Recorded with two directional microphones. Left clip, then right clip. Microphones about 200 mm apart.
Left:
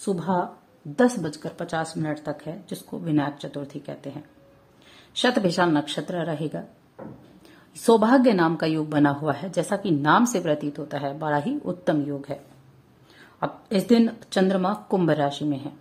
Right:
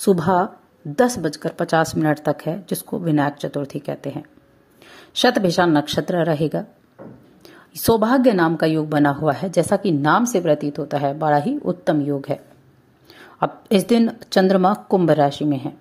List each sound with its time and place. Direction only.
0.0 s a woman's voice: 30° right (ahead or behind)
13.4 s a woman's voice: 25° right (ahead or behind)